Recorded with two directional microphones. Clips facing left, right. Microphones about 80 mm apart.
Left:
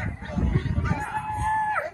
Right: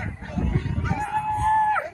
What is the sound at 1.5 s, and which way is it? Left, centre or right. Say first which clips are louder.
Music: right 4 dB; centre.